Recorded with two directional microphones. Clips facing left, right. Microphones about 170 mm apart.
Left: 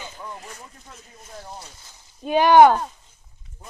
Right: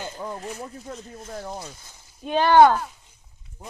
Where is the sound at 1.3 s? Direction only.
45° right (ahead or behind).